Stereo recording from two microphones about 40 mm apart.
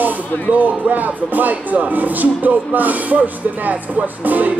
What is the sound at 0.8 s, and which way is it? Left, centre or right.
Speech, right.